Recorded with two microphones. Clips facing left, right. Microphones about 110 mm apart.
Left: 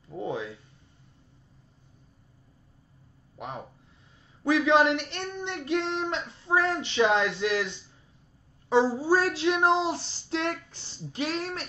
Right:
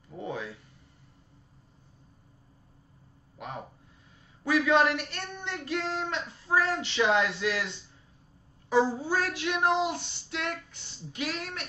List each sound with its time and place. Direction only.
0.2 s a sound: 25° left (ahead or behind)
4.5 s speech: 25° left (ahead or behind)
8.6 s child singing: 30° left (ahead or behind)